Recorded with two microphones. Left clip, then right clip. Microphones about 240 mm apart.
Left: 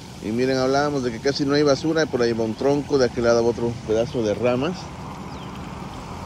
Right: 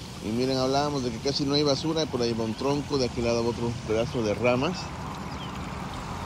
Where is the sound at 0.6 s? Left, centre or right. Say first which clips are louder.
Left 5 dB; centre.